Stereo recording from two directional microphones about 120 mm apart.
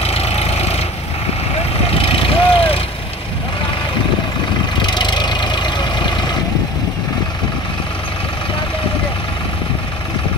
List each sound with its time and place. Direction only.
0.0 s vehicle: 60° left (ahead or behind)
2.0 s vehicle: 50° left (ahead or behind)
4.8 s engine: 40° left (ahead or behind)